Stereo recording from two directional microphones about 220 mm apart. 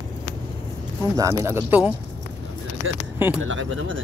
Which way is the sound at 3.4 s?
60° right (ahead or behind).